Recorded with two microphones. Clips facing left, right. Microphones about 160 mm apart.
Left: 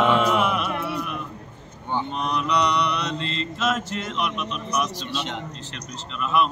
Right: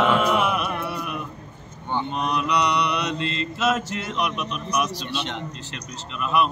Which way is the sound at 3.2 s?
25° left (ahead or behind).